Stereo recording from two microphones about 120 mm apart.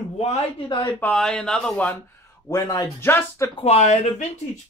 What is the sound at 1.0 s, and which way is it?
Speech, 5° left (ahead or behind).